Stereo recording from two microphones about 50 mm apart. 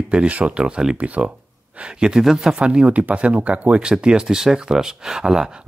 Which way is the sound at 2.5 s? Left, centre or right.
Right.